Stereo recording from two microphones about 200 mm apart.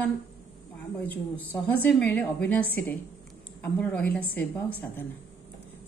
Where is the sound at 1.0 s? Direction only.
10° left (ahead or behind).